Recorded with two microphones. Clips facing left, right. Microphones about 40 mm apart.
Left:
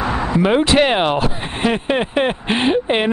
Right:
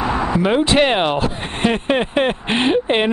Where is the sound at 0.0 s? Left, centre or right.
Centre.